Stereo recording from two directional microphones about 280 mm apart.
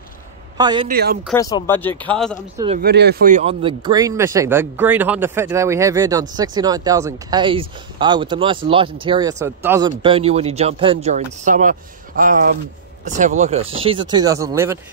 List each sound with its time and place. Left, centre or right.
0.6 s a man's voice: centre
0.8 s speech: right
1.3 s speech: centre
2.5 s speech: centre
2.8 s speech: right; by 14.8 s centre